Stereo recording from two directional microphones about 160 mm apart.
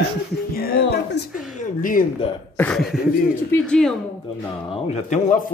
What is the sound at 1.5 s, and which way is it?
Speech, 55° left (ahead or behind).